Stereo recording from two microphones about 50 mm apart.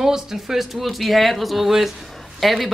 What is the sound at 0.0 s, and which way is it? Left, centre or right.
A man's voice, centre.